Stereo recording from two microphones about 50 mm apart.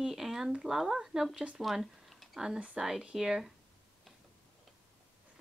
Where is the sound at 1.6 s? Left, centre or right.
Centre.